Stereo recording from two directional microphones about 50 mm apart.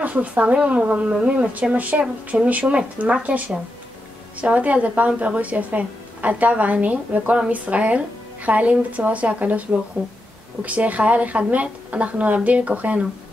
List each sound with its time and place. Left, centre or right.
0.0 s speech: right